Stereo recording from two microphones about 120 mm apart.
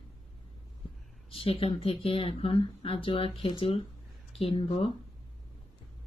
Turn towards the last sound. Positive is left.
turn(degrees=50)  # may be behind; listen again after turning